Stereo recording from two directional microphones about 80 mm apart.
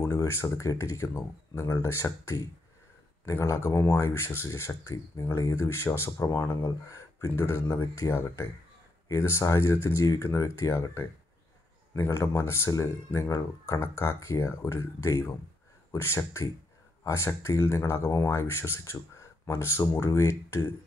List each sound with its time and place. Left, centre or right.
0.0 s speech: left